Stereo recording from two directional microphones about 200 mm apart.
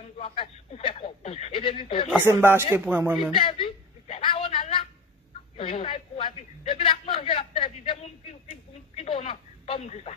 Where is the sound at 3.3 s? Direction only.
25° left (ahead or behind).